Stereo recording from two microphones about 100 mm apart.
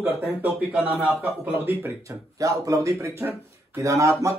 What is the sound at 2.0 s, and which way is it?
Speech, 35° right (ahead or behind).